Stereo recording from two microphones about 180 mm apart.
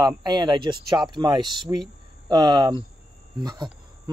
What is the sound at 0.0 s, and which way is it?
Speech, 25° right (ahead or behind).